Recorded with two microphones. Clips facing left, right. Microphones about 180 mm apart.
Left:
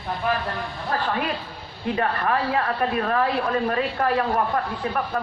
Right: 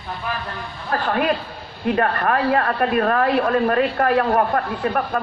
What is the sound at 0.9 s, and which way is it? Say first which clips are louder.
Speech: right 6 dB; 60° right (ahead or behind).